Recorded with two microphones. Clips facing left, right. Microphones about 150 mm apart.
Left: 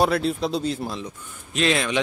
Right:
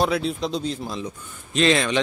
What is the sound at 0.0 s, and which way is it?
A man's voice, centre (ahead or behind).